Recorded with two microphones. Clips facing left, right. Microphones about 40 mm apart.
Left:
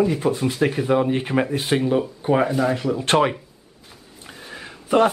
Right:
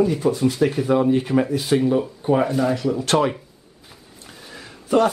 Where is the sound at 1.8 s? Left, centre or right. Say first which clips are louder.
Right 1 dB; centre.